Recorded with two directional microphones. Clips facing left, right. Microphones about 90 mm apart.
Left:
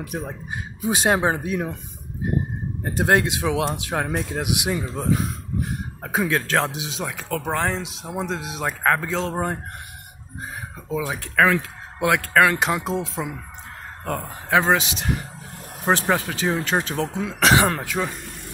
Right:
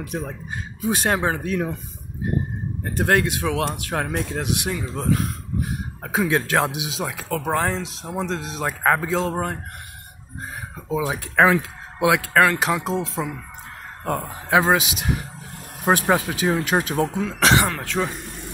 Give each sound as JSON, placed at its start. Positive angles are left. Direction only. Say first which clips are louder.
{"t": 0.1, "sound": "speech", "louder": "right 1 dB", "side_deg": 10}
{"t": 2.8, "sound": "speech", "louder": "left 1 dB", "side_deg": 15}
{"t": 6.2, "sound": "speech", "louder": "right 2 dB", "side_deg": -15}
{"t": 6.9, "sound": "speech", "louder": "right 1 dB", "side_deg": 0}
{"t": 9.3, "sound": "speech", "louder": "even", "side_deg": 10}
{"t": 10.9, "sound": "speech", "louder": "right 2 dB", "side_deg": -15}
{"t": 14.0, "sound": "speech", "louder": "right 3 dB", "side_deg": -10}
{"t": 17.2, "sound": "speech", "louder": "left 3 dB", "side_deg": 5}